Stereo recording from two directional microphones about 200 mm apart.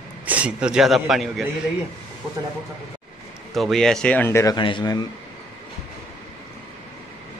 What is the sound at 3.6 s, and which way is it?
A man's voice, centre (ahead or behind).